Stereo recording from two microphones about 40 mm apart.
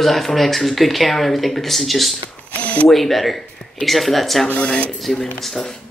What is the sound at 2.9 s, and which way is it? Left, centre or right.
Speech, centre.